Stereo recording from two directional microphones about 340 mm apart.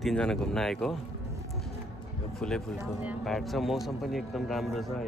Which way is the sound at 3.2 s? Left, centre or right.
Centre.